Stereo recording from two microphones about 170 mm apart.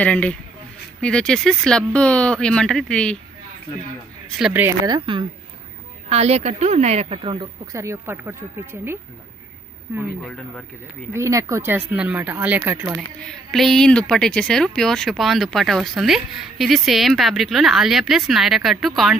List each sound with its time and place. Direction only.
0.0 s speech: 10° left (ahead or behind)
4.4 s speech: 5° right (ahead or behind)
4.6 s speech: 25° right (ahead or behind)
6.0 s a woman's voice: 40° right (ahead or behind)
7.7 s speech: 15° right (ahead or behind)
10.2 s speech: 5° left (ahead or behind)
11.1 s speech: 20° right (ahead or behind)
13.2 s speech: 5° left (ahead or behind)